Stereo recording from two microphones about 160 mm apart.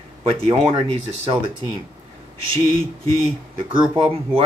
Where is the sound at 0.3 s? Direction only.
35° right (ahead or behind).